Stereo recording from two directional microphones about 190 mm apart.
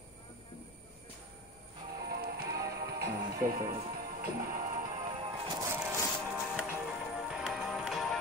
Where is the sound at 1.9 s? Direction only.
55° right (ahead or behind).